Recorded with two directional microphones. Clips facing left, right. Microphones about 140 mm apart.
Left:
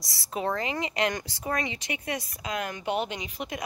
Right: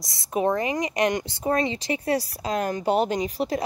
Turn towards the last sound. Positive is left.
turn(degrees=-35)  # may be behind; listen again after turning